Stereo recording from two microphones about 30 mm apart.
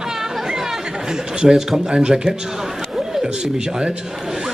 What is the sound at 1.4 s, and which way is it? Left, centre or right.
Speech, right.